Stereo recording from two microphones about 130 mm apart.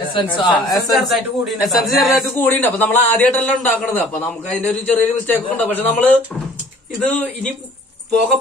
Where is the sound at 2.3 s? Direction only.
15° left (ahead or behind).